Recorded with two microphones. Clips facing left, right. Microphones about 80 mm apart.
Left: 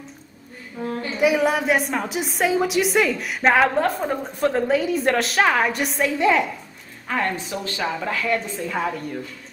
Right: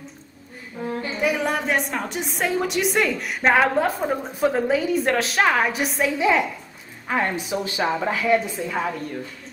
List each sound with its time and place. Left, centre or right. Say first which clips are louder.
0.7 s a woman's voice: left 2 dB; centre
7.1 s speech: right 1 dB; centre
8.5 s a woman's voice: left 1 dB; centre